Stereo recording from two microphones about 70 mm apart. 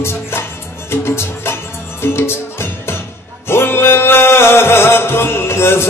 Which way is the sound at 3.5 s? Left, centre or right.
Left.